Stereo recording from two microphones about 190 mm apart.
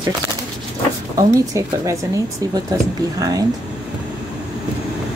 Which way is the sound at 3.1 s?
20° right (ahead or behind).